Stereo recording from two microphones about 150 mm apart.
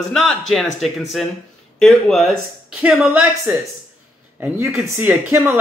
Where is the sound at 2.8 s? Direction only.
10° right (ahead or behind).